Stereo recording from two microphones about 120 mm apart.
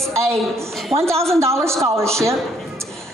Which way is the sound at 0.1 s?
25° right (ahead or behind).